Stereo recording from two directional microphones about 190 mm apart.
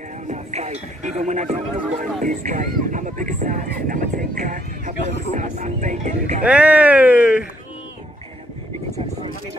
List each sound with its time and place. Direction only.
0.3 s music: 35° right (ahead or behind)
2.2 s a sound: 45° right (ahead or behind)
5.3 s speech: 40° right (ahead or behind)
6.4 s speech: 5° right (ahead or behind)